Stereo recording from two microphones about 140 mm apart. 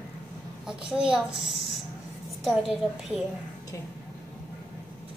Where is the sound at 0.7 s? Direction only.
5° right (ahead or behind).